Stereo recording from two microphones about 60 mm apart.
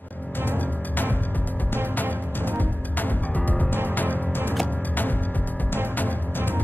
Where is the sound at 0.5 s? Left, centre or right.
Left.